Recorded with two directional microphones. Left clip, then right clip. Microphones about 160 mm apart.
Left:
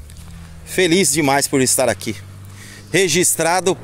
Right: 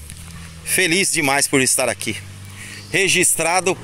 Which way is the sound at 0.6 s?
10° left (ahead or behind).